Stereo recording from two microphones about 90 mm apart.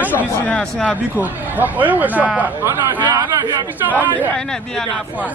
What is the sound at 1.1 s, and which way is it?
A man's voice, 20° right (ahead or behind).